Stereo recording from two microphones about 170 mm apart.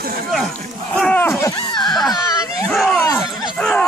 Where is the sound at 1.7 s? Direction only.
25° left (ahead or behind).